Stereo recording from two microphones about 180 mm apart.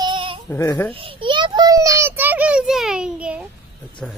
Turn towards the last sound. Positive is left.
turn(degrees=-5)  # may be behind; listen again after turning